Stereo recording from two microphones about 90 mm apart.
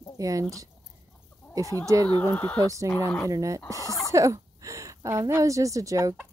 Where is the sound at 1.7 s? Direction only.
30° left (ahead or behind).